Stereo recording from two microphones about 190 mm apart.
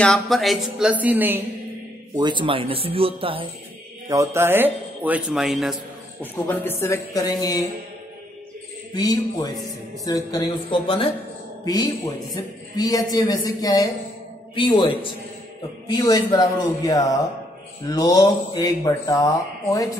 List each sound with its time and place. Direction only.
0.0 s speech: centre (ahead or behind)
2.1 s speech: 25° right (ahead or behind)
4.1 s a man's voice: 15° right (ahead or behind)
6.5 s speech: 10° left (ahead or behind)
8.9 s speech: 20° left (ahead or behind)
15.9 s speech: 20° left (ahead or behind)